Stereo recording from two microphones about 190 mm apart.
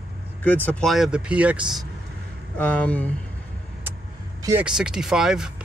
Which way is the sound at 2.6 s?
10° left (ahead or behind).